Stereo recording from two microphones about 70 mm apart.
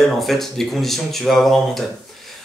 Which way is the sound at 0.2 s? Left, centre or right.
Centre.